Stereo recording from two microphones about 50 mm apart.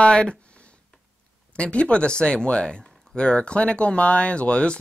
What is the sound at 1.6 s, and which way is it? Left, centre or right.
Speech, left.